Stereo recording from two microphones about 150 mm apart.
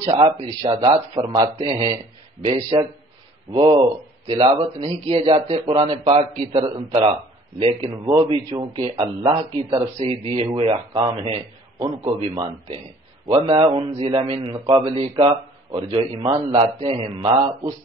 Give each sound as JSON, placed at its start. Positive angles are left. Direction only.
{"t": 0.0, "sound": "a man's voice", "side_deg": -30}
{"t": 9.9, "sound": "a man's voice", "side_deg": -45}